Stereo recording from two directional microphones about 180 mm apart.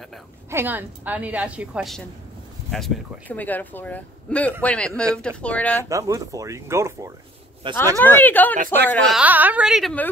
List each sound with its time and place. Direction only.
0.5 s a woman's voice: 10° right (ahead or behind); by 5.9 s 10° left (ahead or behind)
5.9 s a woman's voice: 20° right (ahead or behind)
7.6 s speech: 30° right (ahead or behind)
8.0 s speech: 10° left (ahead or behind)
9.1 s a woman's voice: 10° right (ahead or behind)